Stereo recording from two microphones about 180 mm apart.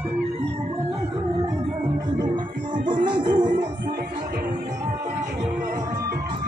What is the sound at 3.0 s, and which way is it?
Music, 25° right (ahead or behind).